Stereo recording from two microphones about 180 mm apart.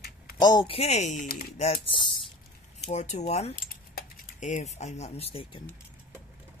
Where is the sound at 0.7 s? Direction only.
40° left (ahead or behind).